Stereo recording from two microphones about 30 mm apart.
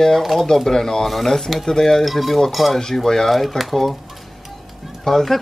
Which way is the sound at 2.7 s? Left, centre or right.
Centre.